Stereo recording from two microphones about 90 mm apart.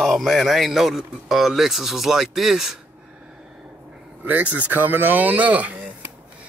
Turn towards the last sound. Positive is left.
turn(degrees=-15)  # may be behind; listen again after turning